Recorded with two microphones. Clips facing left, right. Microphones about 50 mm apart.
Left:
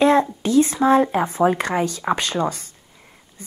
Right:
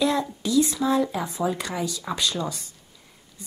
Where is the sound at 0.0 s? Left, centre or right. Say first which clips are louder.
Left 8 dB; left.